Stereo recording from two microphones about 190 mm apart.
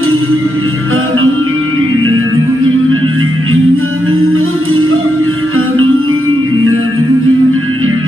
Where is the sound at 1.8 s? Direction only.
90° right.